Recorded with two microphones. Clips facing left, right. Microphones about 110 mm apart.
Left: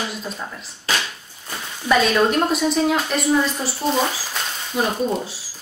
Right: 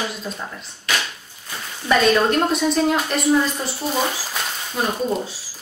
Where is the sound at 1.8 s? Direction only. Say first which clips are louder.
Even; centre (ahead or behind).